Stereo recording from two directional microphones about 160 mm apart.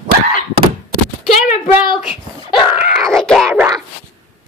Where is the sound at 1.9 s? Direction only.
40° left (ahead or behind).